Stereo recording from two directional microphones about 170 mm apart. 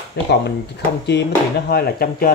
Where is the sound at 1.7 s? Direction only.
65° left (ahead or behind).